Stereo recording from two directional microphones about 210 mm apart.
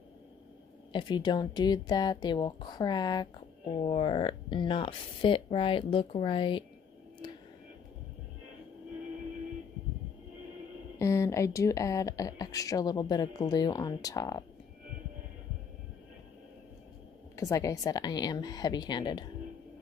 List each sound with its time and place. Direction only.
0.9 s speech: 20° left (ahead or behind)
11.0 s speech: 15° left (ahead or behind)
17.4 s speech: 15° left (ahead or behind)